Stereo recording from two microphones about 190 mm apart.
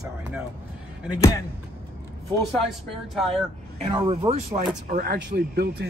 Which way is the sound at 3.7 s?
35° right (ahead or behind).